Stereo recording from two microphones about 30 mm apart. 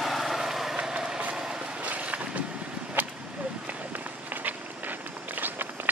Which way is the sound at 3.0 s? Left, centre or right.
Right.